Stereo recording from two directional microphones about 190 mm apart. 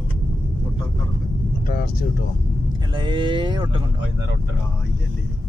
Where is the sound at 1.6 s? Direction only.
50° left (ahead or behind).